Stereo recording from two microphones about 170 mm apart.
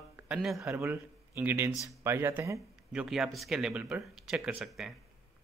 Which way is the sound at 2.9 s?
5° right (ahead or behind).